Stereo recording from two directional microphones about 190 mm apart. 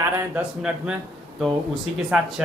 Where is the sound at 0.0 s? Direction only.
5° right (ahead or behind).